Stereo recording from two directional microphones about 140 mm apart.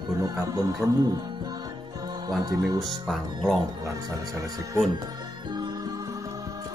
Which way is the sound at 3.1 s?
Centre (ahead or behind).